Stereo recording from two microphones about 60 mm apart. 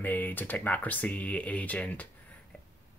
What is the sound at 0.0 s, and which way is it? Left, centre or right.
Speech, left.